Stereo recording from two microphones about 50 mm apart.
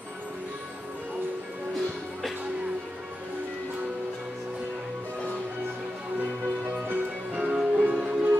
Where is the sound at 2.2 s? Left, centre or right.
Centre.